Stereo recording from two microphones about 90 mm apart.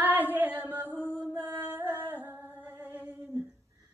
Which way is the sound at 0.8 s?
20° right (ahead or behind).